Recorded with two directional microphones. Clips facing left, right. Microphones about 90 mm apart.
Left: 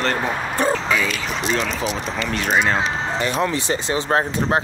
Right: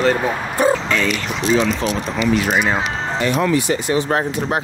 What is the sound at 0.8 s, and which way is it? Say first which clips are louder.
Speech: right 2 dB; 5° left (ahead or behind).